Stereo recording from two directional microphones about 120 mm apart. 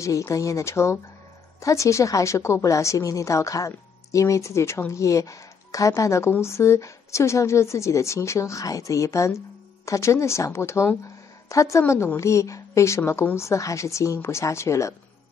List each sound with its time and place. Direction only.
0.0 s a woman's voice: 25° left (ahead or behind)